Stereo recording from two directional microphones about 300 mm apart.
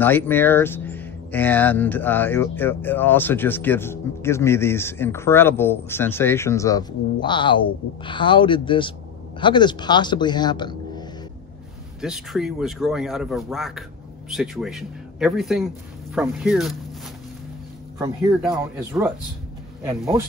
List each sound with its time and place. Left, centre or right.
0.0 s speech: centre
12.0 s speech: centre
17.9 s speech: centre